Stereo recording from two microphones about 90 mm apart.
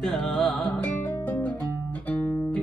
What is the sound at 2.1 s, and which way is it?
Music, 15° left (ahead or behind).